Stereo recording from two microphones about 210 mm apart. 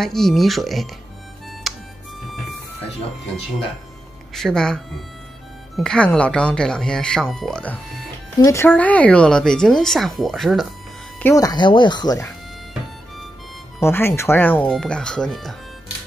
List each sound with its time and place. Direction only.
0.0 s speech: centre (ahead or behind)
1.6 s music: centre (ahead or behind)
4.3 s speech: centre (ahead or behind)
11.1 s speech: 15° left (ahead or behind)
13.7 s speech: 10° left (ahead or behind)